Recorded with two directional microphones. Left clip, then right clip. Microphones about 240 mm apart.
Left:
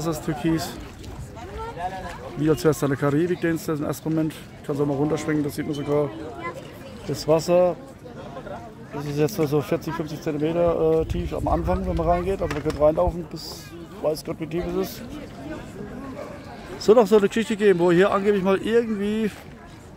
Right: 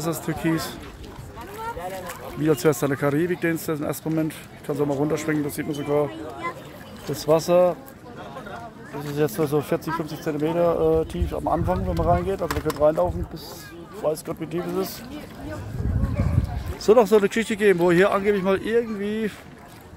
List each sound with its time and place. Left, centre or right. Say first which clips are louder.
0.0 s speech: even; centre
2.4 s speech: even; centre
7.2 s speech: right 1 dB; centre
9.1 s speech: even; centre
12.4 s speech: right 1 dB; right
12.7 s speech: left 1 dB; centre
16.8 s speech: even; centre